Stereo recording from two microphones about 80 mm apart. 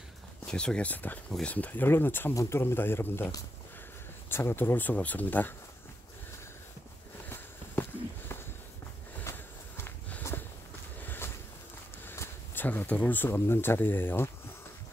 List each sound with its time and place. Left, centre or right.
0.5 s speech: centre; by 3.3 s left
4.3 s speech: left
7.2 s walk: left
9.2 s a sound: left
12.0 s speech: left